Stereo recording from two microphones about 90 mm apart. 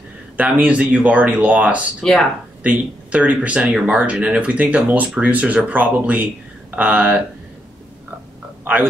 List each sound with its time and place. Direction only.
0.4 s speech: 15° right (ahead or behind)
2.0 s speech: 5° left (ahead or behind)
2.6 s speech: 15° right (ahead or behind)